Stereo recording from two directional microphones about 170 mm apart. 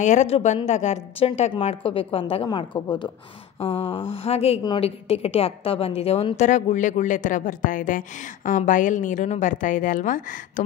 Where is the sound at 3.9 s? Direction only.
35° left (ahead or behind).